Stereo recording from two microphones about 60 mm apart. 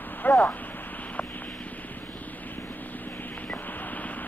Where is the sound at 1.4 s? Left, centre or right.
Centre.